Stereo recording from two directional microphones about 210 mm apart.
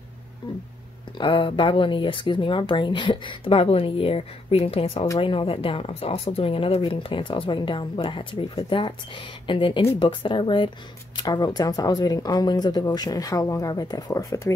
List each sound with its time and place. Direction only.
1.1 s speech: 25° left (ahead or behind)